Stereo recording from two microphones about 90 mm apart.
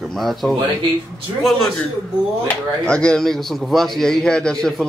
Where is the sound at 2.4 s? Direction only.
10° left (ahead or behind).